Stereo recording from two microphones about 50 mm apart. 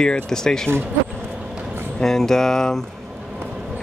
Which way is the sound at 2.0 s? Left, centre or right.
Centre.